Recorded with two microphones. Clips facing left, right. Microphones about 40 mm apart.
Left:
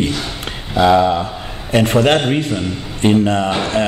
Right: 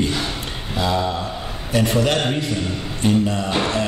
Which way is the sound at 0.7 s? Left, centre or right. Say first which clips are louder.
Left 10 dB; left.